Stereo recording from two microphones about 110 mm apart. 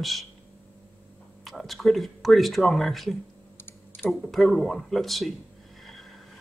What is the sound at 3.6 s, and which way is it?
Typing, 20° left (ahead or behind).